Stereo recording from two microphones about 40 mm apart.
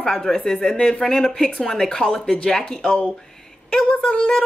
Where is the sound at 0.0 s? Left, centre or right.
Centre.